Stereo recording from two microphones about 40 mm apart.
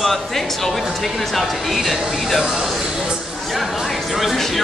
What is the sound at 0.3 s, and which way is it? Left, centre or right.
A man's voice, centre.